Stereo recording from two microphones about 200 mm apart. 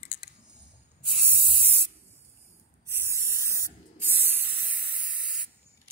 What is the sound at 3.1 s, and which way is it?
Spray, 15° right (ahead or behind).